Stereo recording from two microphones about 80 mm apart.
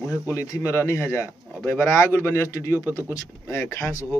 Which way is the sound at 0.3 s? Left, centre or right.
Left.